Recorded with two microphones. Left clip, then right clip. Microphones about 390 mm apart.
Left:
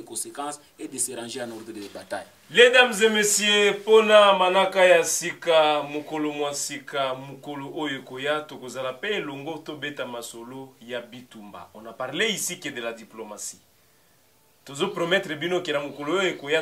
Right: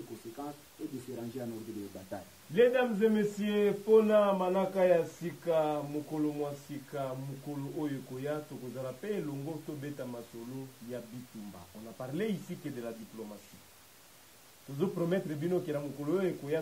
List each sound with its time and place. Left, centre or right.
2.0 s a man's voice: centre
5.9 s speech: left
6.1 s speech: centre
9.3 s speech: left
9.8 s speech: centre
12.0 s speech: centre
14.8 s speech: centre